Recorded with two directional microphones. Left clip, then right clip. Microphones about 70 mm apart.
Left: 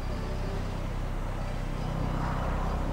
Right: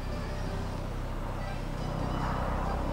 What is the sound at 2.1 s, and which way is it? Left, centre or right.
Vehicle, centre.